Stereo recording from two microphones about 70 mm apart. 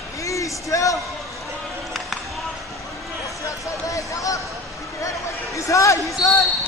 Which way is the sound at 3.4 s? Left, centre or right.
Left.